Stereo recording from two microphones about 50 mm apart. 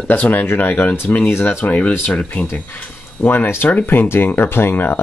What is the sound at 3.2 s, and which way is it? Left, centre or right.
Speech, left.